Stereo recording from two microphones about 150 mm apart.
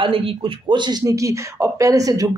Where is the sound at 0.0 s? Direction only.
35° right (ahead or behind).